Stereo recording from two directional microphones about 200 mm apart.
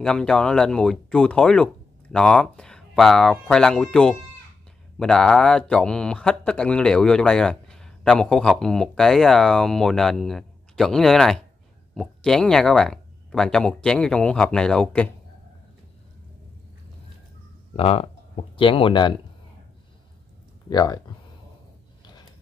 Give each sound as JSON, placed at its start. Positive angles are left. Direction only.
{"t": 0.0, "sound": "speech", "side_deg": 5}
{"t": 17.7, "sound": "speech", "side_deg": 30}
{"t": 20.7, "sound": "speech", "side_deg": 20}